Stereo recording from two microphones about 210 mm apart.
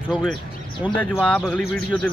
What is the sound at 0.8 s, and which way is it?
Speech, 5° right (ahead or behind).